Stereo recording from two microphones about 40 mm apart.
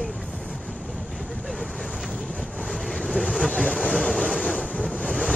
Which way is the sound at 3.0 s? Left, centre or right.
Centre.